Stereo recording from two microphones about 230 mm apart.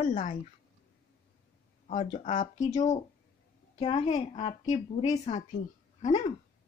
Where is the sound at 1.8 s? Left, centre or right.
Left.